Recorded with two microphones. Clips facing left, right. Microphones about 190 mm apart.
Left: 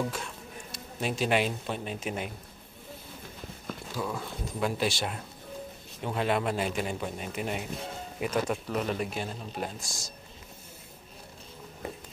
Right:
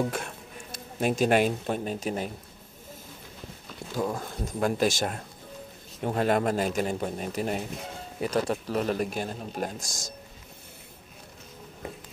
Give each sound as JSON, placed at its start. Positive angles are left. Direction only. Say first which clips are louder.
{"t": 0.1, "sound": "speech", "louder": "right 3 dB", "side_deg": -50}
{"t": 4.0, "sound": "speech", "louder": "right 5 dB", "side_deg": -45}